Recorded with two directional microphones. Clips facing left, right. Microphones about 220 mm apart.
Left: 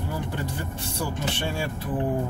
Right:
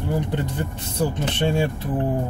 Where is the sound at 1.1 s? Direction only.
25° right (ahead or behind).